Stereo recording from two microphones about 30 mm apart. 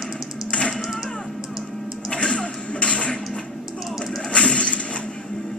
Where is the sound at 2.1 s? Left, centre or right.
Left.